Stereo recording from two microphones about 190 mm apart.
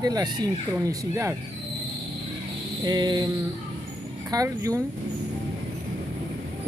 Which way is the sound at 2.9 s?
20° right (ahead or behind).